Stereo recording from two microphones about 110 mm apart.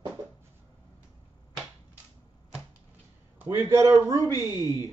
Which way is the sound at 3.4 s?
25° right (ahead or behind).